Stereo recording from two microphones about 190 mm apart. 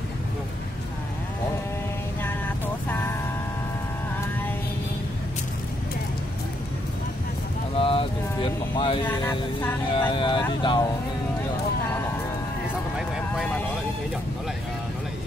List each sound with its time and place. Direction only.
2.9 s vehicle: 10° left (ahead or behind)
7.7 s a sound: 30° left (ahead or behind)
9.0 s speech: 10° left (ahead or behind)
9.9 s speech: 25° left (ahead or behind)
12.9 s vehicle: centre (ahead or behind)